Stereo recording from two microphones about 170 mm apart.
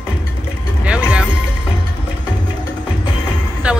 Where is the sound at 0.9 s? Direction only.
5° right (ahead or behind).